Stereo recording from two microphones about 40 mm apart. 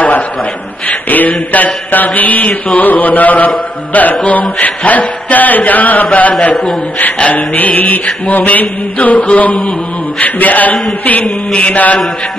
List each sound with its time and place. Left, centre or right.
0.8 s mantra: left